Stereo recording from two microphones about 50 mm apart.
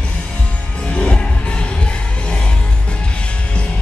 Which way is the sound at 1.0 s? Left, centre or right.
Left.